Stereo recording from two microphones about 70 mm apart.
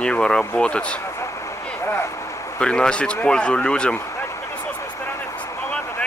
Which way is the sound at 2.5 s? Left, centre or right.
Centre.